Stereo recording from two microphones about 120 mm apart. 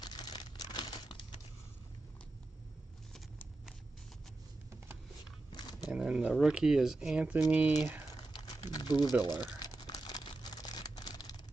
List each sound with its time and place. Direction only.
0.0 s crumpling: 35° left (ahead or behind)
5.5 s a sound: 35° left (ahead or behind)
5.9 s speech: 5° right (ahead or behind)
8.6 s boiling: 35° left (ahead or behind)
9.4 s crumpling: 35° left (ahead or behind)